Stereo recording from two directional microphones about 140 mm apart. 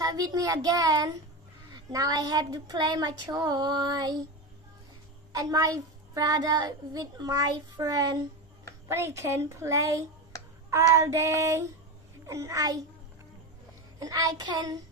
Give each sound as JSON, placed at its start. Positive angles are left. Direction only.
{"t": 0.0, "sound": "a child's voice", "side_deg": -25}
{"t": 5.3, "sound": "a child's voice", "side_deg": -25}
{"t": 13.9, "sound": "a child's voice", "side_deg": -25}